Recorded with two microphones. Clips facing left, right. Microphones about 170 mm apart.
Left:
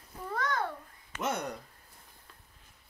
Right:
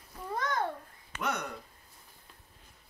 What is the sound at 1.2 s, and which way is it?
Speech, 25° left (ahead or behind).